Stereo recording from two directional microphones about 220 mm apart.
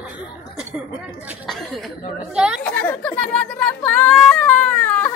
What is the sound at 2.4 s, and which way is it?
Chatter, 5° right (ahead or behind).